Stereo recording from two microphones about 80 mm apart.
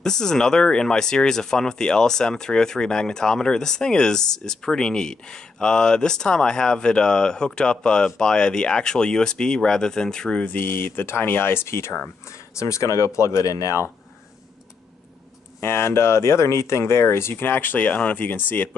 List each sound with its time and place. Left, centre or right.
0.0 s speech: centre; by 13.8 s left
15.6 s speech: left